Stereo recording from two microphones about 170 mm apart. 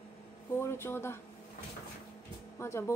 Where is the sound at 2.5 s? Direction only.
15° left (ahead or behind).